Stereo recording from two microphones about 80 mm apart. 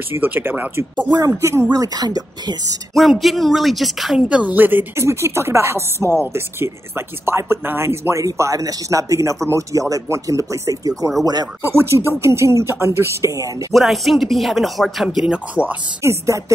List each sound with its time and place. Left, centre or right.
0.1 s speech: right
1.7 s speech: right
2.9 s speech: centre
4.3 s speech: centre
5.0 s speech: right
11.7 s speech: right
13.7 s speech: centre
16.0 s speech: right